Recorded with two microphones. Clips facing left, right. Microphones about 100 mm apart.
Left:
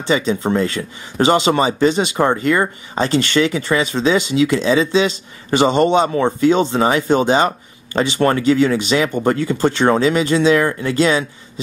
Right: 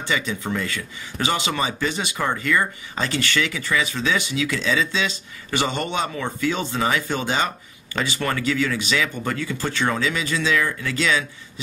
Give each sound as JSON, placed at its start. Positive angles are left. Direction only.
{"t": 0.0, "sound": "speech", "side_deg": 30}